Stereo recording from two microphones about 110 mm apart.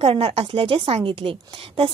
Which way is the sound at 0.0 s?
55° right (ahead or behind).